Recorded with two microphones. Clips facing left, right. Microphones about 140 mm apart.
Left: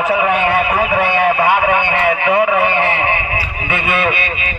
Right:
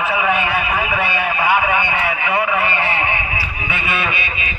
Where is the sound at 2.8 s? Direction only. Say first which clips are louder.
Left 4 dB; 60° left (ahead or behind).